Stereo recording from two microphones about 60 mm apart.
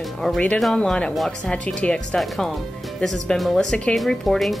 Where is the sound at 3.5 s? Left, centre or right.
Centre.